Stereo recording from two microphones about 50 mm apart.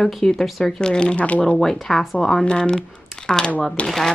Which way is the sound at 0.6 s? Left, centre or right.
Centre.